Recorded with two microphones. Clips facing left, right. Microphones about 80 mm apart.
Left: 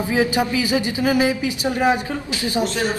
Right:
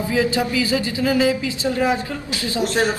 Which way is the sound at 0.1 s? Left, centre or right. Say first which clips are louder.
Left 1 dB; left.